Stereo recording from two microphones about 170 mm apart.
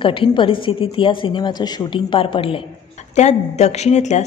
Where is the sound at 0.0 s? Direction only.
30° left (ahead or behind).